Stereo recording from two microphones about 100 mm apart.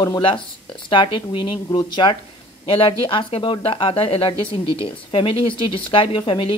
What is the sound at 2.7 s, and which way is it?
Speech, 65° left (ahead or behind).